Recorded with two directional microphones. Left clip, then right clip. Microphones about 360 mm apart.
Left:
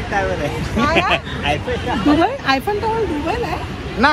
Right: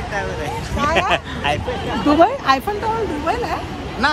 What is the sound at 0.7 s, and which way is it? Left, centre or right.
Speech, centre.